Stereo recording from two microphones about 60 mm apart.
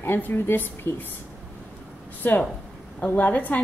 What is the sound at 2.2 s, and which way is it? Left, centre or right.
A woman's voice, left.